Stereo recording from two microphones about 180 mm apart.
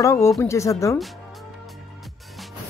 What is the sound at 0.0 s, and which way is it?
Speech, 15° left (ahead or behind).